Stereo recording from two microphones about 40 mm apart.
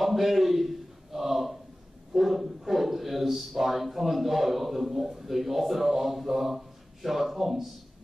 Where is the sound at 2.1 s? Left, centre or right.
Centre.